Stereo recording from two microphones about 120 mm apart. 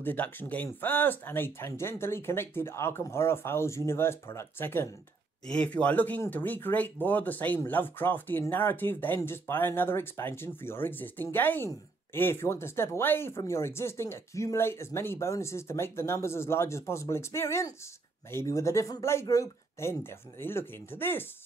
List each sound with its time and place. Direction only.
0.0 s speech: 15° left (ahead or behind)